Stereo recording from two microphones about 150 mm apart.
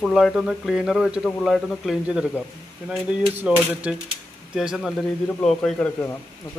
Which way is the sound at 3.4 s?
10° right (ahead or behind).